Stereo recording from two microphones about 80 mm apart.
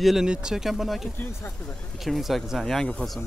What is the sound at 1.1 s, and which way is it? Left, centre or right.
Speech, left.